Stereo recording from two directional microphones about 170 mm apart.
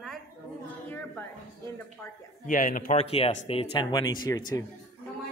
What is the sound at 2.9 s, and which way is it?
Speech, 35° left (ahead or behind).